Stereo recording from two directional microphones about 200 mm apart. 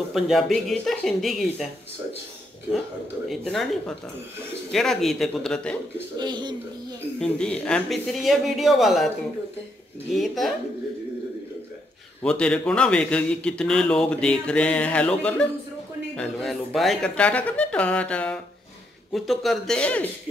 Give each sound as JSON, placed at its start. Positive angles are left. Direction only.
{"t": 0.1, "sound": "a man's voice", "side_deg": 0}
{"t": 3.3, "sound": "a man's voice", "side_deg": 0}
{"t": 6.1, "sound": "speech", "side_deg": -20}
{"t": 7.2, "sound": "a man's voice", "side_deg": 5}
{"t": 10.1, "sound": "a man's voice", "side_deg": 0}
{"t": 12.2, "sound": "a man's voice", "side_deg": 5}